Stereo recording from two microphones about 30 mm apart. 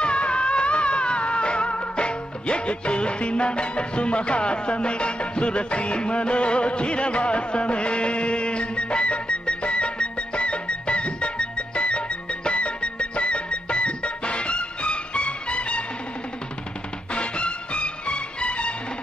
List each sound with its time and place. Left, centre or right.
0.0 s music: left
17.1 s music: left